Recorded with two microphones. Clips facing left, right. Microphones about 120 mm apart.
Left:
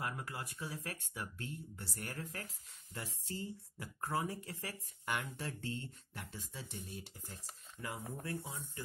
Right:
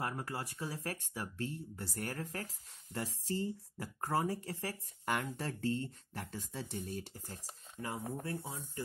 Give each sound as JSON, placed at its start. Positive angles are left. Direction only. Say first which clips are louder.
{"t": 0.0, "sound": "speech", "louder": "right 3 dB", "side_deg": -35}